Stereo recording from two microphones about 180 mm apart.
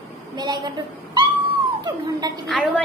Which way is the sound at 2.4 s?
5° left (ahead or behind).